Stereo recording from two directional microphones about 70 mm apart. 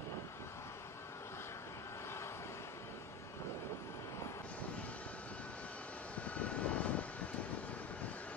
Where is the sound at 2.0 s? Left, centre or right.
Left.